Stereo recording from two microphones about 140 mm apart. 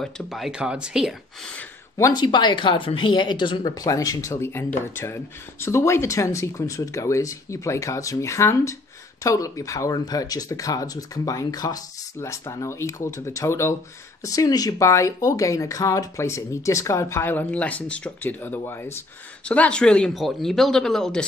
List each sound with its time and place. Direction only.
0.0 s speech: centre (ahead or behind)
2.0 s speech: 25° left (ahead or behind); by 21.3 s 5° left (ahead or behind)